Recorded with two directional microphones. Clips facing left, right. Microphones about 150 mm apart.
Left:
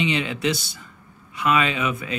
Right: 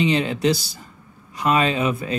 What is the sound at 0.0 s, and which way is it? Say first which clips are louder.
Speech: right 4 dB; 35° right (ahead or behind).